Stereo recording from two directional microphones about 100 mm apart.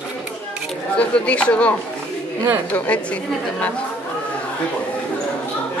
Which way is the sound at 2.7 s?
15° left (ahead or behind).